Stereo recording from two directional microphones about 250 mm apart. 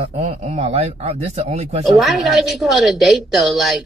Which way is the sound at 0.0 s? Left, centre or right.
Right.